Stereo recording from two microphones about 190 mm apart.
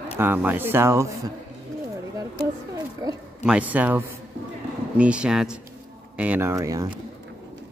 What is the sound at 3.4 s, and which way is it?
Speech, 5° right (ahead or behind).